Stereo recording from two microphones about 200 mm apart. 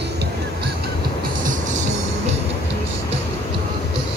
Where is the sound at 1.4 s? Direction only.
40° right (ahead or behind).